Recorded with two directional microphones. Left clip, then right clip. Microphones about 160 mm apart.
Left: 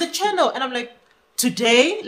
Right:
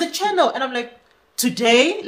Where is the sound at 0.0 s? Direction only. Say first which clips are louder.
Right 1 dB; 15° left (ahead or behind).